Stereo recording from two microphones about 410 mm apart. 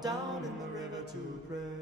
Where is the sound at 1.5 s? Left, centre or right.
Centre.